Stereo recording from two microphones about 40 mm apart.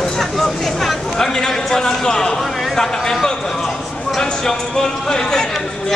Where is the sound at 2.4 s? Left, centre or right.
Centre.